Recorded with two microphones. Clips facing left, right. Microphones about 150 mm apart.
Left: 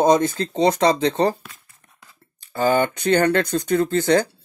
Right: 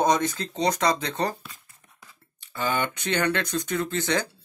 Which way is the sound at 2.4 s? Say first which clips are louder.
Left 8 dB; 40° left (ahead or behind).